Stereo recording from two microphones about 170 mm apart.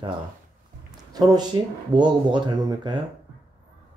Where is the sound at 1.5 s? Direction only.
25° right (ahead or behind).